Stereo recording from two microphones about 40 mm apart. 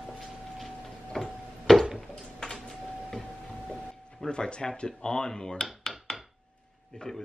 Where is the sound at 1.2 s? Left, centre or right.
Centre.